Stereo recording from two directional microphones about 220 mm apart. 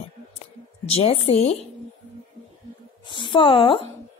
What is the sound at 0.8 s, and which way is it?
Speech, 25° left (ahead or behind).